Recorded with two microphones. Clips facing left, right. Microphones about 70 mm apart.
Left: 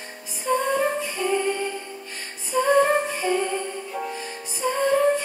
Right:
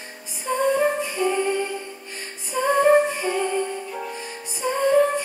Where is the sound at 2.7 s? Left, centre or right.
Centre.